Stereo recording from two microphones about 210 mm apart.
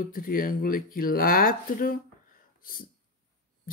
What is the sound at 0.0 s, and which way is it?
Speech, 40° left (ahead or behind).